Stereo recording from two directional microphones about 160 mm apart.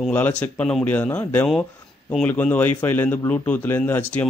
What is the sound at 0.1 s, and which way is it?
Speech, 10° left (ahead or behind).